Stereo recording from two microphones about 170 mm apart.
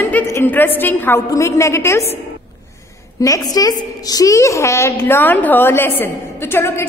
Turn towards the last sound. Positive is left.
turn(degrees=15)  # may be behind; listen again after turning